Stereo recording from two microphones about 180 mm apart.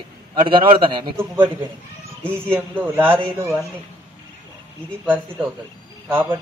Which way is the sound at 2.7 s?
10° right (ahead or behind).